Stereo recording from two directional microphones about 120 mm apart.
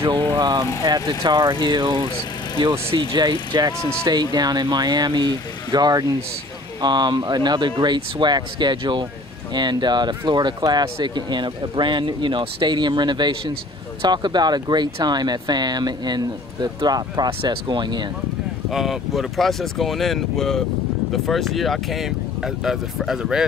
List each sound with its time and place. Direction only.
0.3 s speech: 35° right (ahead or behind)
18.7 s speech: centre (ahead or behind)